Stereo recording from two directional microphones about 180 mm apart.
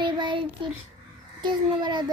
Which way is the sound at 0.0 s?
25° right (ahead or behind).